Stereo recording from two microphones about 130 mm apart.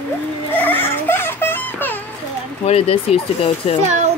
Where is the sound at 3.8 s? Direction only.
60° right (ahead or behind).